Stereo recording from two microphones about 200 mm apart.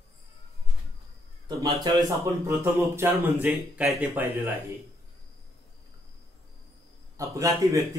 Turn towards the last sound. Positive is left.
turn(degrees=-15)  # may be behind; listen again after turning